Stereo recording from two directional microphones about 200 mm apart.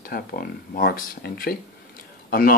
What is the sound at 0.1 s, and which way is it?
Speech, 50° left (ahead or behind).